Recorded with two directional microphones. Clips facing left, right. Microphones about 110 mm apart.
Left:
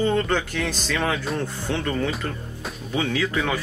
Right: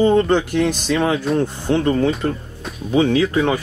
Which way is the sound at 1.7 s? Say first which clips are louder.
Right 9 dB; 25° right (ahead or behind).